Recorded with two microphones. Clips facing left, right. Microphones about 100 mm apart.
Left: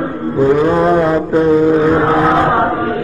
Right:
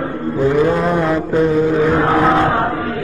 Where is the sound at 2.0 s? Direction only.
5° left (ahead or behind).